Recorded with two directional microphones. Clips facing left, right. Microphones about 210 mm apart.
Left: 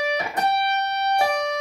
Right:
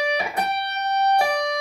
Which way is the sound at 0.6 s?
65° left (ahead or behind).